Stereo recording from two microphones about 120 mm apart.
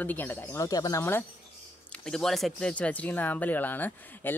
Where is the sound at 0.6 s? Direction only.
30° left (ahead or behind).